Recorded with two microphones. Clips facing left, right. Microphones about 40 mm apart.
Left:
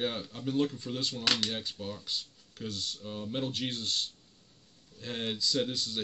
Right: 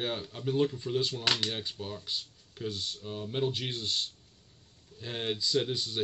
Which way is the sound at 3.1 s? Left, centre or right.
Centre.